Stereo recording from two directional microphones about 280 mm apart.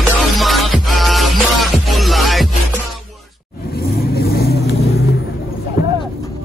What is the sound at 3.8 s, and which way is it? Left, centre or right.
Vehicle, left.